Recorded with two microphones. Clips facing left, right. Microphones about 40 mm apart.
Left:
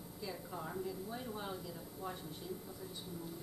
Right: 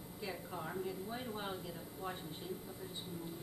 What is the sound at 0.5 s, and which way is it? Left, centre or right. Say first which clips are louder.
Speech: even; centre.